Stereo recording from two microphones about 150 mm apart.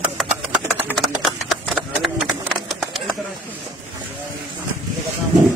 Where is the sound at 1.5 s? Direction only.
Centre (ahead or behind).